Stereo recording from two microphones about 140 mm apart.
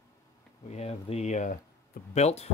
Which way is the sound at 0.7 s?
50° left (ahead or behind).